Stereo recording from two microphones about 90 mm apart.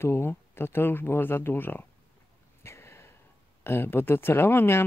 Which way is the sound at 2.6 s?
30° left (ahead or behind).